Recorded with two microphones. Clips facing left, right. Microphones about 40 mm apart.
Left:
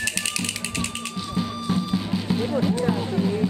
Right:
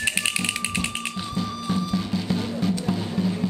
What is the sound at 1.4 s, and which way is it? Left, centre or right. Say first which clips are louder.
Music: left 2 dB; centre.